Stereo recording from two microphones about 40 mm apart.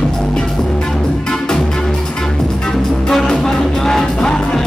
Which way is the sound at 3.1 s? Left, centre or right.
Centre.